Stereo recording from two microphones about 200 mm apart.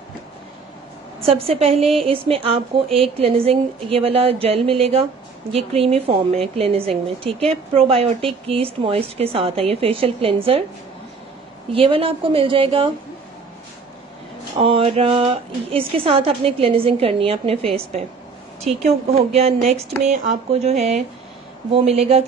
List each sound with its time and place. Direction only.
1.2 s a woman's voice: 30° right (ahead or behind)
11.7 s a woman's voice: 25° right (ahead or behind)
14.6 s a woman's voice: 25° right (ahead or behind)